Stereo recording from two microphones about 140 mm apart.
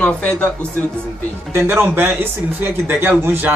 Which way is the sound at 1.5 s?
15° right (ahead or behind).